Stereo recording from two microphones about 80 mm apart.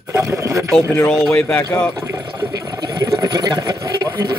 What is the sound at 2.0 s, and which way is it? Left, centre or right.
Water, right.